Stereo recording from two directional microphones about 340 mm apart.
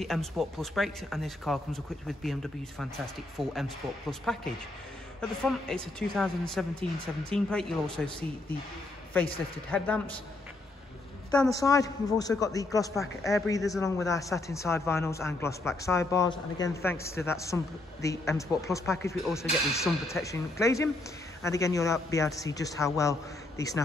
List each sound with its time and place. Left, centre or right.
0.0 s speech: centre
5.4 s speech: centre
9.7 s speech: centre
11.2 s speech: centre